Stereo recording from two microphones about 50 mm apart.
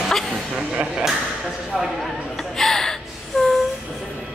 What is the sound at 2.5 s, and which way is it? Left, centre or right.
Gasp, centre.